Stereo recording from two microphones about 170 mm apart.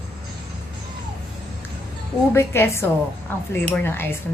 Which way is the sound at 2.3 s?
15° left (ahead or behind).